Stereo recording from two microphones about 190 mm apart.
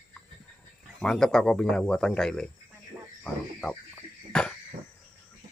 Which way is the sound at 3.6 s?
5° left (ahead or behind).